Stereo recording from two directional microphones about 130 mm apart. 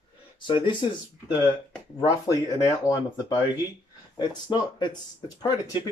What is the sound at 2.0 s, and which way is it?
Speech, 25° left (ahead or behind).